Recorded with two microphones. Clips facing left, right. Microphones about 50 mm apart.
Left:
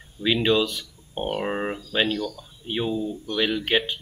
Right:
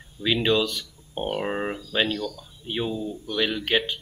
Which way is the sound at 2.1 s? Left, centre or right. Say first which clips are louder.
Left 2 dB; left.